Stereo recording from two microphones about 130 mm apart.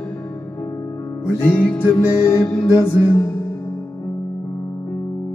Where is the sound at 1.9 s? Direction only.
20° left (ahead or behind).